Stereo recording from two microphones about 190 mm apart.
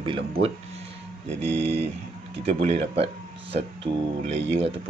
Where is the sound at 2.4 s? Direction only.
30° right (ahead or behind).